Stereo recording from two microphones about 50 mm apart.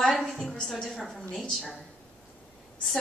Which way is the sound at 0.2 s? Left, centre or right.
Centre.